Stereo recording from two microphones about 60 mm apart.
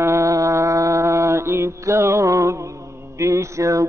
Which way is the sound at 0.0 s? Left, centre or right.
Right.